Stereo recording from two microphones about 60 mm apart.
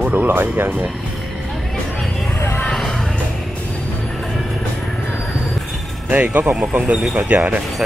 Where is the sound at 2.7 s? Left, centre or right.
Centre.